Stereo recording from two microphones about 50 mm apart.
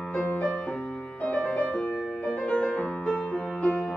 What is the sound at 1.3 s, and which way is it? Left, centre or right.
Music, left.